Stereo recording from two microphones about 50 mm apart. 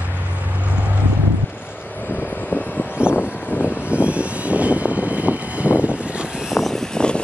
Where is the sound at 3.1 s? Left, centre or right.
Left.